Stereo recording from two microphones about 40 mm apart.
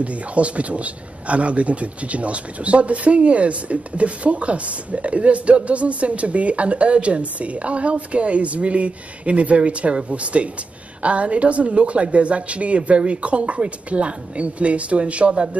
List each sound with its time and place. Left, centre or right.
0.0 s speech: right